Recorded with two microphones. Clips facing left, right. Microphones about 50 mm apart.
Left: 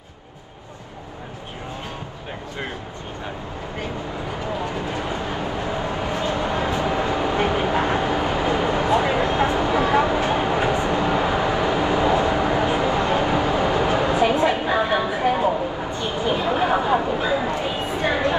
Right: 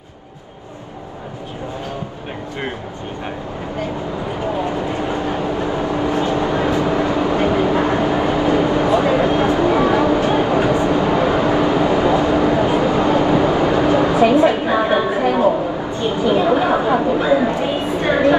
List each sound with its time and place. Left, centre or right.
4.6 s vehicle: right
9.1 s a sound: right
10.7 s vehicle: right
12.3 s vehicle: left
12.8 s vehicle: right
16.0 s a sound: right